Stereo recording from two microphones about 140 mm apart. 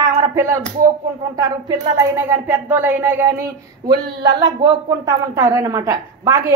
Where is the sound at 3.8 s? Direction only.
30° right (ahead or behind).